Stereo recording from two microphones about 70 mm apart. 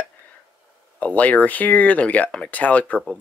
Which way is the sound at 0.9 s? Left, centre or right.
Left.